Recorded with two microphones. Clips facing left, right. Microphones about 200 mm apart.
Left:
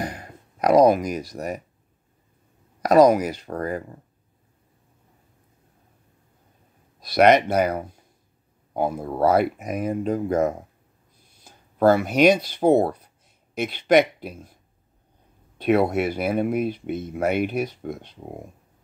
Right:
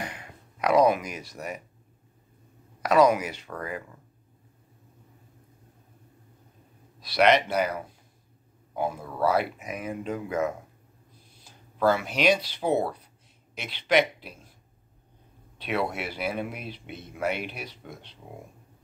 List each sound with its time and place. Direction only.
0.0 s music: 40° left (ahead or behind)
2.8 s speech: 40° left (ahead or behind)
7.0 s speech: 45° left (ahead or behind)
15.5 s speech: 50° left (ahead or behind)